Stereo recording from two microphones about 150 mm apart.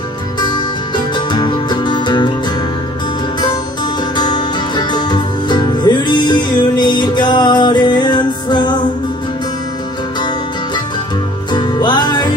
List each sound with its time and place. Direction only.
0.4 s music: 30° left (ahead or behind)
4.2 s music: 30° left (ahead or behind)
11.5 s music: 30° left (ahead or behind)